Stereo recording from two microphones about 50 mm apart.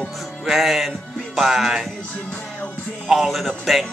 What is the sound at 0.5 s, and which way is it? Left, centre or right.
Music, centre.